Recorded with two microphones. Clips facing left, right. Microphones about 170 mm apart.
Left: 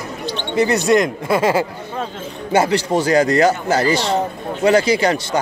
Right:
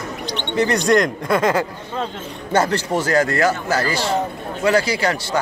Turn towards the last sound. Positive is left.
turn(degrees=20)  # may be behind; listen again after turning